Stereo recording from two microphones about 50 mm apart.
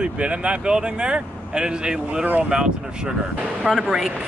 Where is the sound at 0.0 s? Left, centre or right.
Right.